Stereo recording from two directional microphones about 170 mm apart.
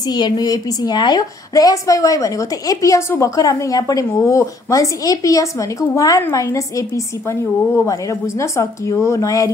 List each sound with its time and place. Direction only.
0.1 s a woman's voice: 25° left (ahead or behind)